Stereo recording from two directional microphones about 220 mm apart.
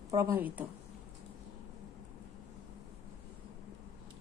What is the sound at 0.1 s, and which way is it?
Speech, 10° right (ahead or behind).